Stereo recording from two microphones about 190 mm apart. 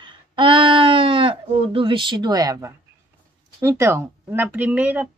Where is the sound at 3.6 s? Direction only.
15° right (ahead or behind).